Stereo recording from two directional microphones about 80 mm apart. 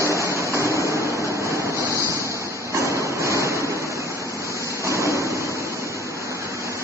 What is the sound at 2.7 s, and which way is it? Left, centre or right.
Hammer, right.